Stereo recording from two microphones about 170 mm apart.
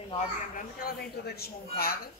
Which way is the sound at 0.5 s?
65° left (ahead or behind).